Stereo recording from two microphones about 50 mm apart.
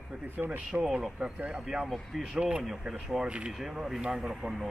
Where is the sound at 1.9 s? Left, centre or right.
Centre.